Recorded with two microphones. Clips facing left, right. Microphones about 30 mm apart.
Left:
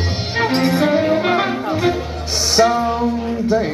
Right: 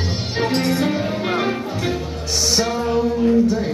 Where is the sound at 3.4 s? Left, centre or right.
Left.